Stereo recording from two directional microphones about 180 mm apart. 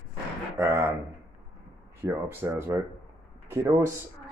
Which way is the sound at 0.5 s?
15° right (ahead or behind).